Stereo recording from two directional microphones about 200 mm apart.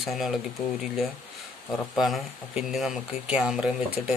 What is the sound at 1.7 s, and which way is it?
Speech, centre (ahead or behind).